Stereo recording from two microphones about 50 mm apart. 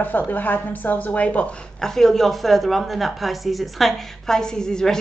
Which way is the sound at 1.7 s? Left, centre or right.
Centre.